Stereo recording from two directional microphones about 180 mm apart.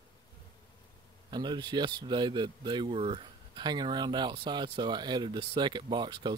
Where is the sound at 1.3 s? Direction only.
25° right (ahead or behind).